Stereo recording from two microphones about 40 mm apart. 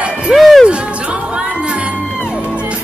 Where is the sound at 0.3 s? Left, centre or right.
Centre.